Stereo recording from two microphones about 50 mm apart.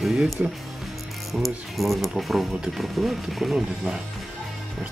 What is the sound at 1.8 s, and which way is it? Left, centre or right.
Speech, centre.